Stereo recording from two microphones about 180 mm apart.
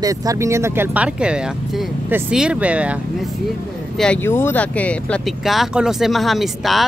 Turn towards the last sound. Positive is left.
turn(degrees=0)  # may be behind; listen again after turning